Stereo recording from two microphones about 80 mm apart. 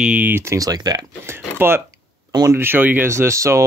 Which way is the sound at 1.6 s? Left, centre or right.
Right.